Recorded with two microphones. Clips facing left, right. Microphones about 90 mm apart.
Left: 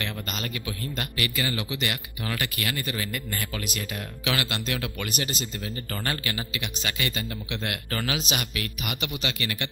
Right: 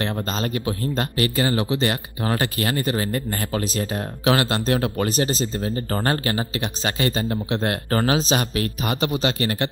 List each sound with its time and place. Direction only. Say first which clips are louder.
0.0 s speech: right 8 dB; 35° right (ahead or behind)